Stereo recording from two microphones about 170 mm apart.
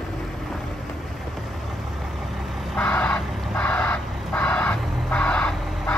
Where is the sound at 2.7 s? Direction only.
5° left (ahead or behind).